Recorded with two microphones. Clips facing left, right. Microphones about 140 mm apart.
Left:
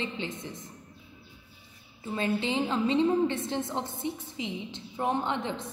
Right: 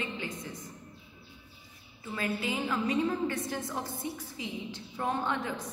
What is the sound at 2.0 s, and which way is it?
A woman's voice, 25° left (ahead or behind).